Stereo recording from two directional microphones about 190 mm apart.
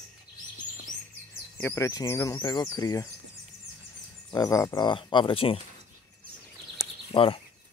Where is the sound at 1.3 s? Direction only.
10° left (ahead or behind).